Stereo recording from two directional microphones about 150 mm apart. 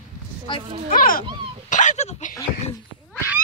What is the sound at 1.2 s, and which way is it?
Dog, 35° right (ahead or behind).